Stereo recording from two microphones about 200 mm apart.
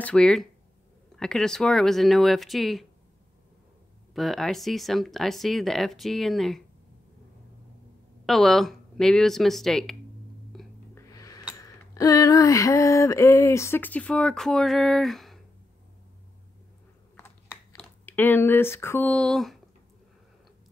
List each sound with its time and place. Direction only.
0.0 s speech: 5° left (ahead or behind)
4.1 s speech: centre (ahead or behind)
8.3 s speech: centre (ahead or behind)
10.5 s music: centre (ahead or behind)
11.0 s a sound: 15° left (ahead or behind); by 15.4 s centre (ahead or behind)
17.7 s speech: 10° left (ahead or behind)